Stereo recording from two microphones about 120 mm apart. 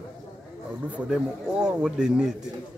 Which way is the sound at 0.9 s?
5° right (ahead or behind).